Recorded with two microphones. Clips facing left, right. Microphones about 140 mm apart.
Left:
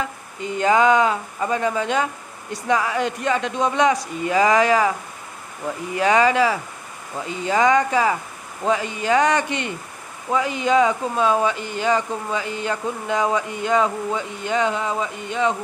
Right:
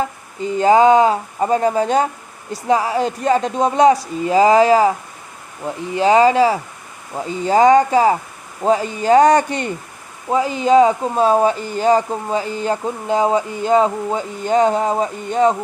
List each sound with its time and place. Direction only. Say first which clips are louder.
0.0 s speech: right 5 dB; 35° right (ahead or behind)